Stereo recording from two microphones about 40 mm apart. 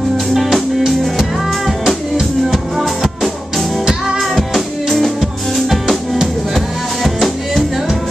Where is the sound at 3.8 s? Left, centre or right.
Centre.